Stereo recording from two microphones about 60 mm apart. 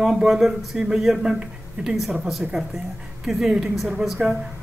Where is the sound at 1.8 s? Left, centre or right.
Centre.